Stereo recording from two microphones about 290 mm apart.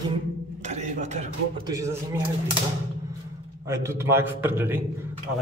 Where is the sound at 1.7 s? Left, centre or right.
Centre.